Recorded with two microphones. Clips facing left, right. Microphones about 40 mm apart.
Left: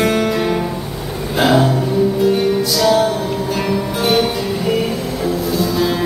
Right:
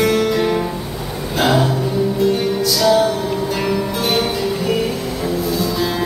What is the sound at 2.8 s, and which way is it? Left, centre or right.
Music, centre.